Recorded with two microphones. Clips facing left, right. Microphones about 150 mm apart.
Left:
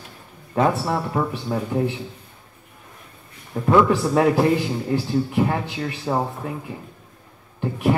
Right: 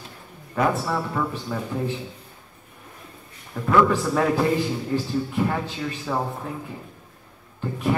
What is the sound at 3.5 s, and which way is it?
Speech, 40° left (ahead or behind).